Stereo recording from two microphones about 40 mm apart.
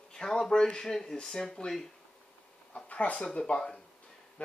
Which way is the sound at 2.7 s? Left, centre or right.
Left.